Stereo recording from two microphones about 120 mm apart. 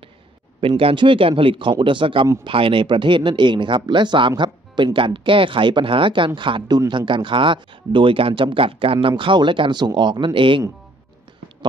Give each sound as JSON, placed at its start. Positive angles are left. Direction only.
{"t": 0.6, "sound": "speech", "side_deg": -50}